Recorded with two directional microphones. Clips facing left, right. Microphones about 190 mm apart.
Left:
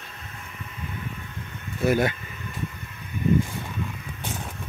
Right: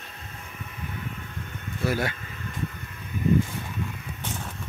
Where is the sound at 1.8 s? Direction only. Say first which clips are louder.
Left 5 dB; 20° left (ahead or behind).